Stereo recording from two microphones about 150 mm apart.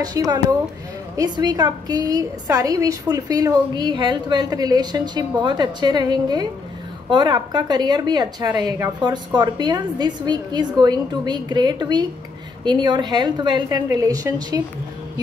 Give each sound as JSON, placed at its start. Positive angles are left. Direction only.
{"t": 0.0, "sound": "a woman's voice", "side_deg": -25}